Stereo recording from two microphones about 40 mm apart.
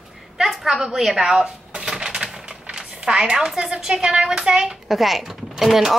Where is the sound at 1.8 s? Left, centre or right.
Centre.